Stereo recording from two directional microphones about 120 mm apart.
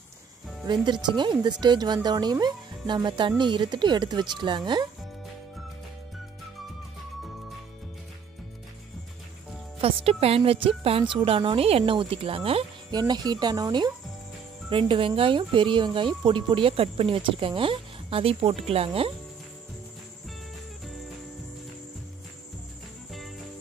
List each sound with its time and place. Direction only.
1.0 s speech: 40° right (ahead or behind)
9.8 s speech: 55° right (ahead or behind)
12.9 s speech: 35° right (ahead or behind); by 18.9 s 55° right (ahead or behind)